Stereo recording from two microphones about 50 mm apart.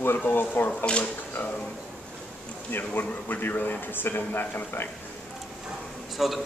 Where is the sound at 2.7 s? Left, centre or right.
Left.